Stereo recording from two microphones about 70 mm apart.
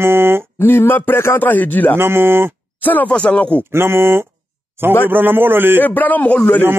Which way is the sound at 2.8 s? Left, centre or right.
Left.